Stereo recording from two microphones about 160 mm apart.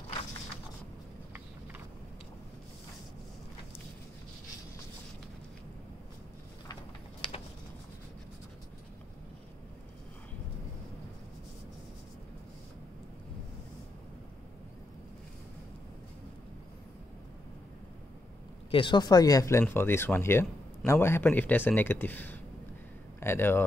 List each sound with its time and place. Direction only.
18.7 s a man's voice: 30° left (ahead or behind); by 23.6 s 15° left (ahead or behind)